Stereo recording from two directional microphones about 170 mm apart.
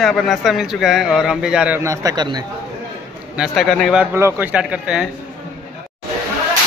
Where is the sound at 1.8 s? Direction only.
20° right (ahead or behind).